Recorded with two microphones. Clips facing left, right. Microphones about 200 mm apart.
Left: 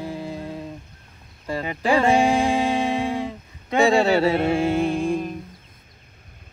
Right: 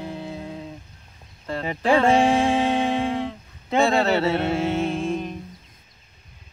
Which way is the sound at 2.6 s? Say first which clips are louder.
Even; 10° left (ahead or behind).